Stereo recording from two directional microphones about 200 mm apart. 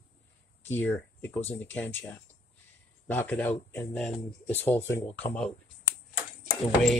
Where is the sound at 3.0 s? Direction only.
10° left (ahead or behind).